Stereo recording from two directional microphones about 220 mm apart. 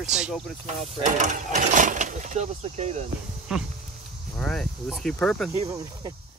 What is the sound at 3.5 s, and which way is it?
Speech, 5° right (ahead or behind).